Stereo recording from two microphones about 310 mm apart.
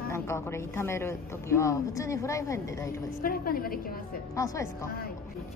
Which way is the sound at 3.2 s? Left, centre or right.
Left.